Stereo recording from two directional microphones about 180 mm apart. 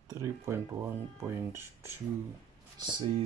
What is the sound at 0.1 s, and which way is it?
Speech, 15° right (ahead or behind).